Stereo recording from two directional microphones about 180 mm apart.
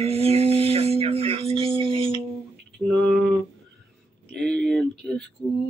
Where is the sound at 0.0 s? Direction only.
35° right (ahead or behind).